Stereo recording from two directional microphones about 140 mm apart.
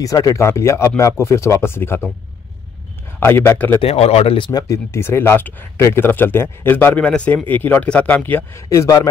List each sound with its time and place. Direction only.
0.0 s speech: 25° left (ahead or behind)
3.2 s speech: 15° left (ahead or behind)
3.8 s speech: 45° left (ahead or behind)
4.5 s speech: 25° left (ahead or behind)